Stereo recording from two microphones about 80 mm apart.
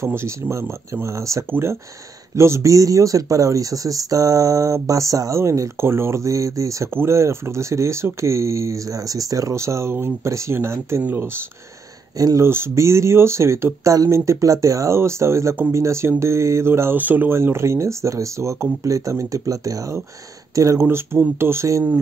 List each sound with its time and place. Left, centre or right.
0.0 s speech: right
6.9 s speech: right
12.2 s speech: right
12.4 s speech: right
20.8 s speech: right